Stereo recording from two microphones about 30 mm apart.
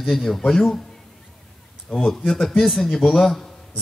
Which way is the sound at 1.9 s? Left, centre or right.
Centre.